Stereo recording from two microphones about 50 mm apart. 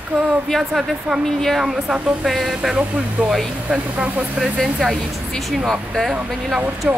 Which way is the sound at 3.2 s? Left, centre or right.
Right.